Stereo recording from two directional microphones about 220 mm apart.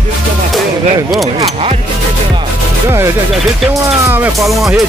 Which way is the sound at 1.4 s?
25° right (ahead or behind).